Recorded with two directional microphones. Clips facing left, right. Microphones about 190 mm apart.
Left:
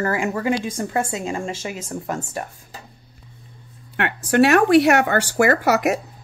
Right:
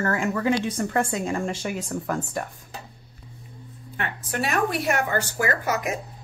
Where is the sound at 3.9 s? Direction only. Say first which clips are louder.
Left 11 dB; 75° left (ahead or behind).